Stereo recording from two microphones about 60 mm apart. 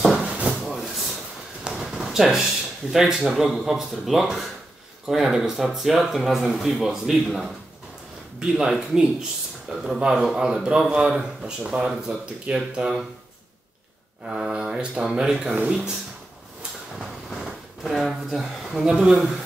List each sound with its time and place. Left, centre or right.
0.0 s rub: centre
0.3 s rub: right
0.6 s drawer open or close: centre
1.7 s speech: centre
14.2 s speech: centre
17.3 s speech: centre